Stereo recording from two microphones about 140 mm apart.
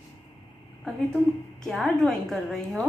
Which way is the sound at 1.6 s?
Centre (ahead or behind).